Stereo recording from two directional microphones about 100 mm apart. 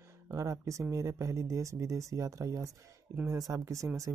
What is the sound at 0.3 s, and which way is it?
Speech, 30° right (ahead or behind).